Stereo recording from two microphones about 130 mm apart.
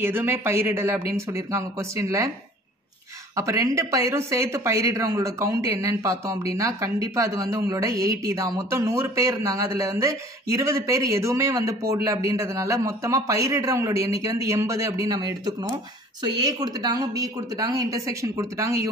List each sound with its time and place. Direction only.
0.0 s speech: 15° right (ahead or behind)
3.3 s speech: 25° right (ahead or behind)